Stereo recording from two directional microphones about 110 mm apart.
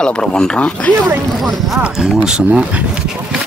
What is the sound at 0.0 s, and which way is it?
Speech, 5° left (ahead or behind).